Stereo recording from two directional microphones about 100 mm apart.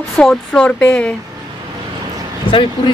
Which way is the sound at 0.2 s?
10° left (ahead or behind).